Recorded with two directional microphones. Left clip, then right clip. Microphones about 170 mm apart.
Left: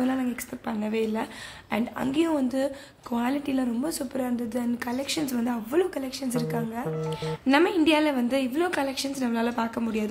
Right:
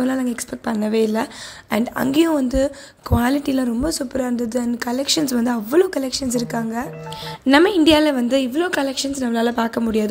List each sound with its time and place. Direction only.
0.0 s a woman's voice: 30° right (ahead or behind)